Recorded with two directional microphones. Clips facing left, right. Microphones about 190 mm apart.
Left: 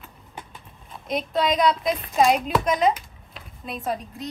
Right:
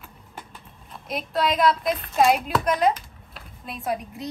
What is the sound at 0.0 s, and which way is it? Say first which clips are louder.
Speech: left 1 dB; centre (ahead or behind).